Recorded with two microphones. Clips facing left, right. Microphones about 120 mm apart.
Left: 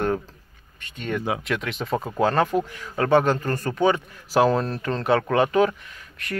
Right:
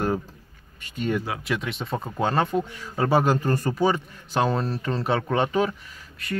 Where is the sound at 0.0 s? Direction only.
5° right (ahead or behind).